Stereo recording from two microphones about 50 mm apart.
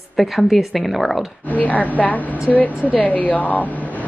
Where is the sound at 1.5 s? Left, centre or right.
Left.